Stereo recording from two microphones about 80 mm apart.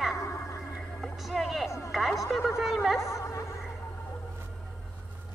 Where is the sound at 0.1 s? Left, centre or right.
Left.